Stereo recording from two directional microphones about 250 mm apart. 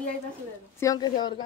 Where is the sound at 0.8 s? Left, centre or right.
Centre.